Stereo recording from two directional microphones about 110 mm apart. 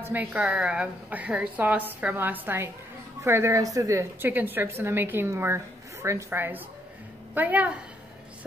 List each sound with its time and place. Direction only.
0.0 s a woman's voice: 15° right (ahead or behind)